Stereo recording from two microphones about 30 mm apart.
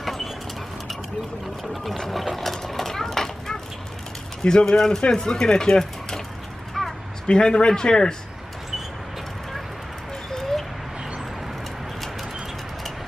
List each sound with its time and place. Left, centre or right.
0.0 s a sound: centre
1.6 s speech: centre
2.0 s vehicle: centre
4.4 s speech: left
6.8 s a sound: centre
7.2 s a man's voice: left